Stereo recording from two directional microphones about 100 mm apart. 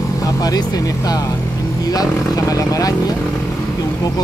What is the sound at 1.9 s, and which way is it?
Speech, 35° left (ahead or behind).